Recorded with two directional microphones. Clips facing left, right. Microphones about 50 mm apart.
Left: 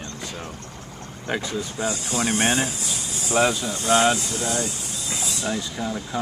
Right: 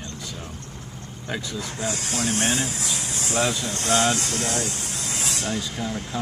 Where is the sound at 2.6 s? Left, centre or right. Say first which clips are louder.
Right 1 dB; right.